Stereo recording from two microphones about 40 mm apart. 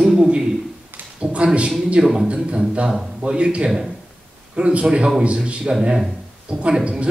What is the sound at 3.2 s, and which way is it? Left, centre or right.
A man's voice, right.